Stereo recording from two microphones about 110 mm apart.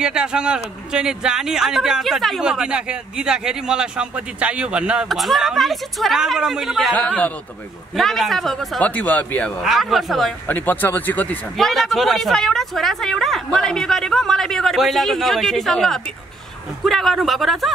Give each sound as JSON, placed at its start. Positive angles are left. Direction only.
{"t": 0.0, "sound": "a man's voice", "side_deg": -10}
{"t": 6.9, "sound": "speech", "side_deg": 10}
{"t": 7.9, "sound": "a man's voice", "side_deg": 0}
{"t": 8.8, "sound": "speech", "side_deg": 15}
{"t": 9.6, "sound": "a man's voice", "side_deg": 0}
{"t": 10.4, "sound": "speech", "side_deg": 15}
{"t": 11.5, "sound": "a man's voice", "side_deg": 0}